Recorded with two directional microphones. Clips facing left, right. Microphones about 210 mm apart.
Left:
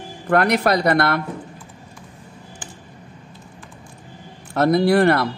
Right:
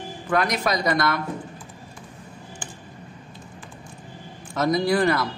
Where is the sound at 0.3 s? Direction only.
60° left (ahead or behind).